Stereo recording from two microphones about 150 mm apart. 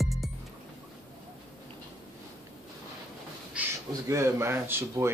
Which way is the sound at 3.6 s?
10° right (ahead or behind).